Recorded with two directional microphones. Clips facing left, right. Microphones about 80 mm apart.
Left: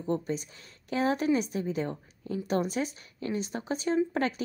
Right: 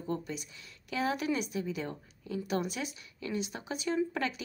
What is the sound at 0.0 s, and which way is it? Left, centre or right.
A woman's voice, left.